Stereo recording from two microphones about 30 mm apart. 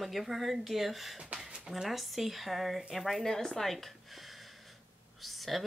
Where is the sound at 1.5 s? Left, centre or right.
Right.